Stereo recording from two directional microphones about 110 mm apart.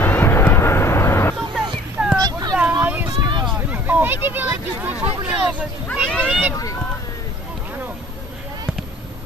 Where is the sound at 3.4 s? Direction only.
15° right (ahead or behind).